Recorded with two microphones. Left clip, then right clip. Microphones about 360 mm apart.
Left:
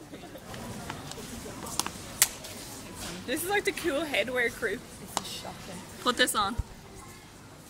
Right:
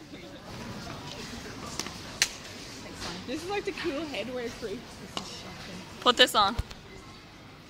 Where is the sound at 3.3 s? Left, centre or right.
Left.